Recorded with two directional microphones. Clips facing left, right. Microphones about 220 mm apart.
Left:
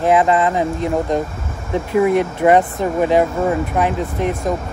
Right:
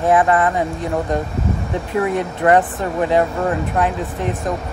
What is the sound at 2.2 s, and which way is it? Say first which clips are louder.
Speech: left 2 dB; 20° left (ahead or behind).